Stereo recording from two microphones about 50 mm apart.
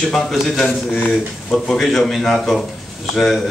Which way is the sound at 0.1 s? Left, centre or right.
Centre.